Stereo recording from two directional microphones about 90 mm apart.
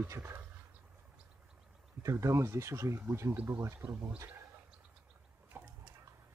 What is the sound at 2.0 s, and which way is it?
Speech, 35° right (ahead or behind).